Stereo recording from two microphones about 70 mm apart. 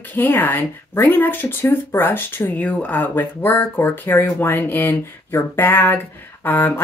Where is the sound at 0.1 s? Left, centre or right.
Left.